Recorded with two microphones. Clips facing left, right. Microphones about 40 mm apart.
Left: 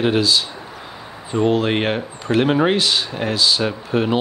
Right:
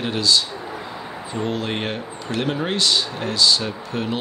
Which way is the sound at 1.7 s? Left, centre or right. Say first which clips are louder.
Left 6 dB; left.